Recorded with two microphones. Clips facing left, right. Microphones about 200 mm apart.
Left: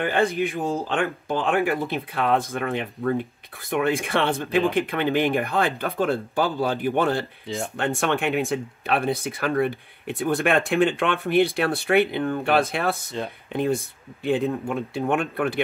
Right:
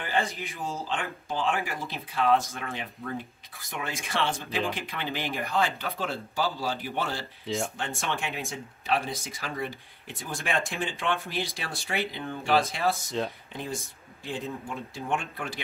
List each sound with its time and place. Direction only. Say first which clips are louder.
0.0 s speech: left 8 dB; 55° left (ahead or behind)